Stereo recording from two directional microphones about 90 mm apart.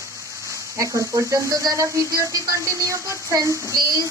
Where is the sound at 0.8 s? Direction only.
35° right (ahead or behind).